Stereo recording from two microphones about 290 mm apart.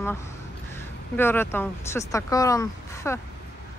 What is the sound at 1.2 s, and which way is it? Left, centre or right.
Speech, centre.